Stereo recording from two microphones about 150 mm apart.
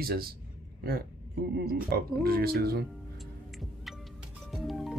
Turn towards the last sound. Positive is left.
turn(degrees=0)  # may be behind; listen again after turning